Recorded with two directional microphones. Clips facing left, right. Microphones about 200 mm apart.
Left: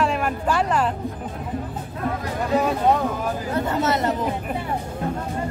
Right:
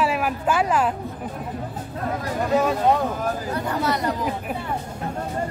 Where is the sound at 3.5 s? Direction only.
25° left (ahead or behind).